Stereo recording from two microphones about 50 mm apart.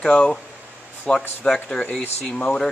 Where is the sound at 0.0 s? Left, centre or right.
Centre.